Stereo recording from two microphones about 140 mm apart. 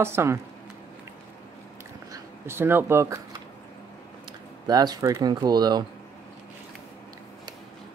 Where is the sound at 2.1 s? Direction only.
15° right (ahead or behind).